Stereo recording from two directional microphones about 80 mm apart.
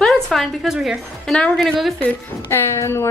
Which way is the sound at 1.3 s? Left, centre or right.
Centre.